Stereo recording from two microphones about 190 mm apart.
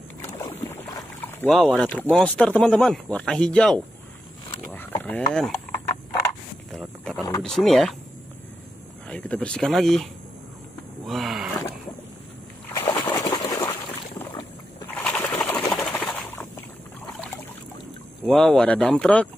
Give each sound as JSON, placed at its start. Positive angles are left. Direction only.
{"t": 0.2, "sound": "rowboat", "side_deg": 15}
{"t": 2.0, "sound": "speech", "side_deg": 5}
{"t": 4.7, "sound": "a sound", "side_deg": 10}
{"t": 6.7, "sound": "wild animals", "side_deg": 0}
{"t": 7.4, "sound": "speech", "side_deg": 0}
{"t": 9.1, "sound": "speech", "side_deg": 5}
{"t": 11.1, "sound": "speech", "side_deg": 0}
{"t": 12.6, "sound": "a sound", "side_deg": 20}
{"t": 15.0, "sound": "bird", "side_deg": 10}
{"t": 15.5, "sound": "a sound", "side_deg": 10}
{"t": 18.2, "sound": "speech", "side_deg": 0}